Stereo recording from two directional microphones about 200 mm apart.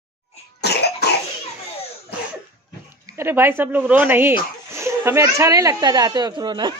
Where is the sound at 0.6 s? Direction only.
55° left (ahead or behind).